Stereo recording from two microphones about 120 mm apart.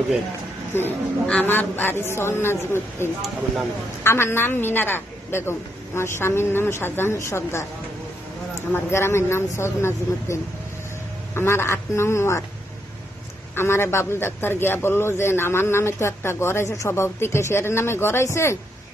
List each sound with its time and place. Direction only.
0.7 s a man's voice: 15° left (ahead or behind)
8.7 s a man's voice: 20° left (ahead or behind)
13.6 s a man's voice: 20° left (ahead or behind)